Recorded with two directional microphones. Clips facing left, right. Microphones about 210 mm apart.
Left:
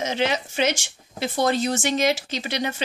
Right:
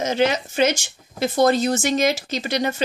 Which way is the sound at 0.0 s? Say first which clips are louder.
Right 4 dB; 45° right (ahead or behind).